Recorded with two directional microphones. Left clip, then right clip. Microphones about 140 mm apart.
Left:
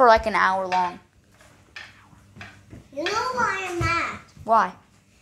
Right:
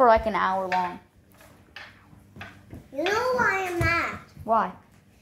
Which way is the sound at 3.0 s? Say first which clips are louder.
Right 1 dB; 45° left (ahead or behind).